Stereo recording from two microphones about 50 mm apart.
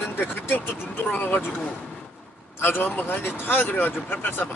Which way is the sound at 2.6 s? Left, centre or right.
Left.